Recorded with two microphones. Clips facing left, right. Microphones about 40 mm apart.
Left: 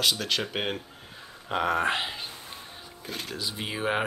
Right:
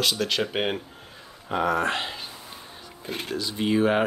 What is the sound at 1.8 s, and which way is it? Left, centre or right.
Speech, centre.